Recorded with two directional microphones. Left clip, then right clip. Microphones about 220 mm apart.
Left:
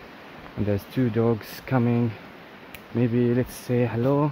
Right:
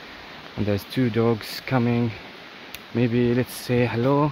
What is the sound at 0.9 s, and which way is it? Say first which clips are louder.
Speech: right 2 dB; 20° right (ahead or behind).